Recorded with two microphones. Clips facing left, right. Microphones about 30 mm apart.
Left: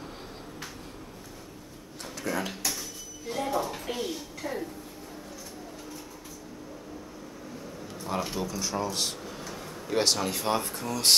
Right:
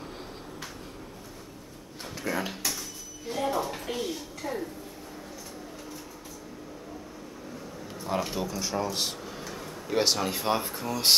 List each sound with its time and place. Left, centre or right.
2.2 s speech: centre
8.0 s speech: centre